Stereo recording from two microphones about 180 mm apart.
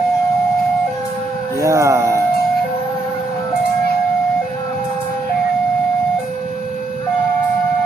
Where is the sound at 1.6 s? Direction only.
15° right (ahead or behind).